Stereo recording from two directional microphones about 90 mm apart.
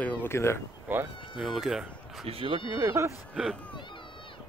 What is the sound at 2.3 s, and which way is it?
Speech, 90° right.